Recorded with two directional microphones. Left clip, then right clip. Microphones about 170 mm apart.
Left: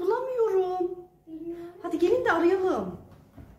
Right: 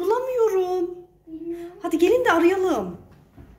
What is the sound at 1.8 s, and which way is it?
Speech, 40° right (ahead or behind).